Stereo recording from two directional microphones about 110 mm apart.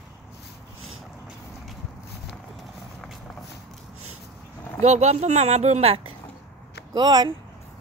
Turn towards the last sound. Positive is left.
turn(degrees=-40)  # may be behind; listen again after turning